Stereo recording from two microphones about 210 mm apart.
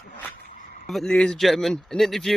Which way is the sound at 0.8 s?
Centre (ahead or behind).